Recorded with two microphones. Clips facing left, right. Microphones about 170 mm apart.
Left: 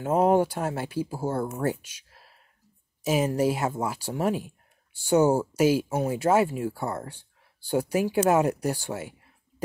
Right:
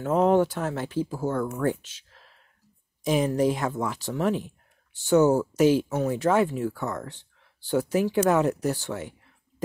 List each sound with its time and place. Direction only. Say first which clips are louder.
0.1 s speech: even; 10° left (ahead or behind)
1.3 s speech: even; 30° left (ahead or behind)
1.6 s speech: right 2 dB; 10° left (ahead or behind)